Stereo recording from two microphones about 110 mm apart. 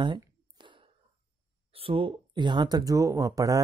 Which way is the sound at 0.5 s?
45° right (ahead or behind).